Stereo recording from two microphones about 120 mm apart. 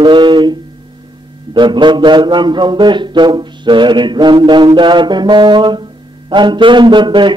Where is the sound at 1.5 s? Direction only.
40° right (ahead or behind).